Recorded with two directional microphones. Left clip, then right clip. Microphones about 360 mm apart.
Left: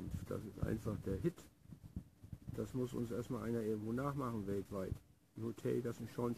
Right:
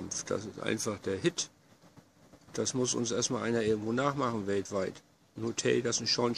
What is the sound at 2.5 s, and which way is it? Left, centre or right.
A man's voice, centre.